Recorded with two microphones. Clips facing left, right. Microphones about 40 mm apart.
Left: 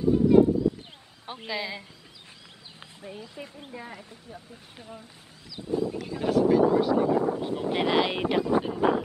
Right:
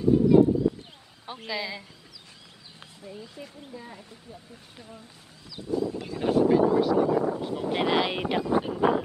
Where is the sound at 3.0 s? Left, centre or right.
Left.